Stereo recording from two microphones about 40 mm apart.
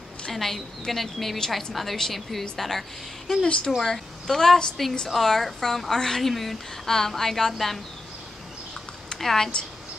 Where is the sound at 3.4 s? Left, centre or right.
Centre.